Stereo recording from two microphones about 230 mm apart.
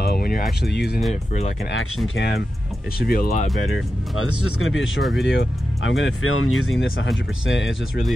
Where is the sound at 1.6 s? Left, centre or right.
Left.